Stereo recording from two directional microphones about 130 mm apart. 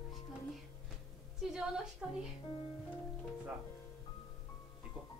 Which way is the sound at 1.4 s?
5° right (ahead or behind).